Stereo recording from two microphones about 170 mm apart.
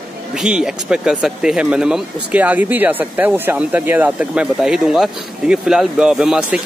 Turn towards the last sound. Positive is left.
turn(degrees=-5)  # may be behind; listen again after turning